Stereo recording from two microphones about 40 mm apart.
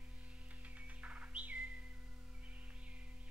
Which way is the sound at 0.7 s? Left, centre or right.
Right.